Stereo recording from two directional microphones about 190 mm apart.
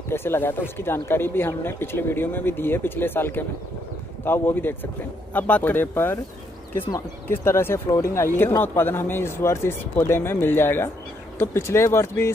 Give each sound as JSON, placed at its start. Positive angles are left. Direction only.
{"t": 0.1, "sound": "speech", "side_deg": 10}